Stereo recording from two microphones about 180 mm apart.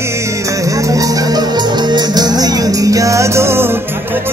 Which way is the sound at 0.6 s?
20° right (ahead or behind).